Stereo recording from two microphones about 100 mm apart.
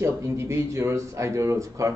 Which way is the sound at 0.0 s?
25° right (ahead or behind).